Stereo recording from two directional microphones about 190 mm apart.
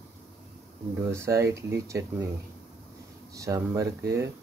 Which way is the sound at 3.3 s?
15° right (ahead or behind).